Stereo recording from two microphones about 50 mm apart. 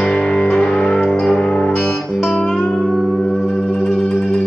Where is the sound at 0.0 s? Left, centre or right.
Centre.